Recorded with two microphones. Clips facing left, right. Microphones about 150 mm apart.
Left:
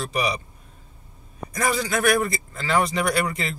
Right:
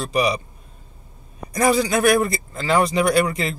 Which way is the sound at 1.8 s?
15° right (ahead or behind).